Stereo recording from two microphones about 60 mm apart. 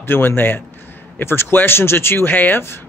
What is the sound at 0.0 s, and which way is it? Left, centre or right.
Speech, left.